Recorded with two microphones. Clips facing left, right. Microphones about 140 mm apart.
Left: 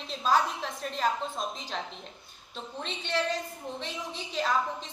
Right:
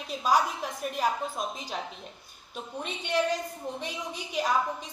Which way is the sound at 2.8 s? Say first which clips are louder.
Right 3 dB; 15° right (ahead or behind).